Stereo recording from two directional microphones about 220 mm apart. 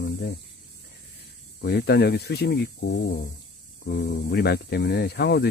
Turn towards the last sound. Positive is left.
turn(degrees=50)  # may be behind; listen again after turning